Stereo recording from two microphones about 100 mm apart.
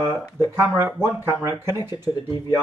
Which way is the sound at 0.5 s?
25° right (ahead or behind).